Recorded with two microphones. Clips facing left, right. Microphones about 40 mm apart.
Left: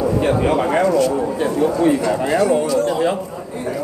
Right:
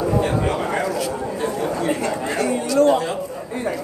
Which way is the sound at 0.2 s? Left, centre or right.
Centre.